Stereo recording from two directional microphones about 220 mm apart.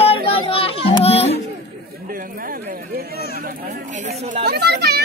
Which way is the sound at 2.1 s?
40° right (ahead or behind).